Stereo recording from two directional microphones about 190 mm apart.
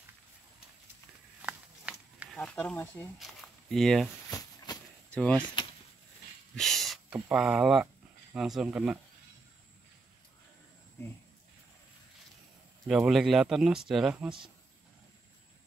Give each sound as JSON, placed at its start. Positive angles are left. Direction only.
{"t": 1.4, "sound": "a sound", "side_deg": -5}
{"t": 2.4, "sound": "speech", "side_deg": 5}
{"t": 5.1, "sound": "speech", "side_deg": 5}
{"t": 5.4, "sound": "speech", "side_deg": 25}
{"t": 6.5, "sound": "a sound", "side_deg": 0}
{"t": 7.2, "sound": "speech", "side_deg": -5}
{"t": 12.8, "sound": "speech", "side_deg": 0}